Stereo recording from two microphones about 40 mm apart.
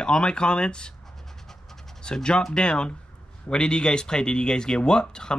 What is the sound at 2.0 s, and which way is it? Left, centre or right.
Speech, left.